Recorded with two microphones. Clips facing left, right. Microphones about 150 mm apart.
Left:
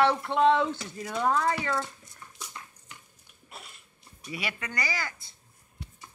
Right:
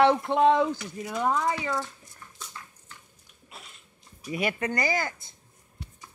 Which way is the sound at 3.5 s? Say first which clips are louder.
Left 1 dB; 5° left (ahead or behind).